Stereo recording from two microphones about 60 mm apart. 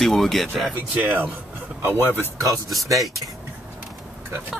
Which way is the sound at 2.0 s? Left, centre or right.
Left.